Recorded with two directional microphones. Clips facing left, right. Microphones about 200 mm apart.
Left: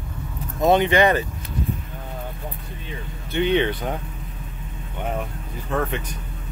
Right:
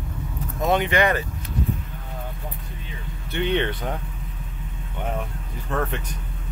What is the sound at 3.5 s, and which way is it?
Speech, 10° left (ahead or behind).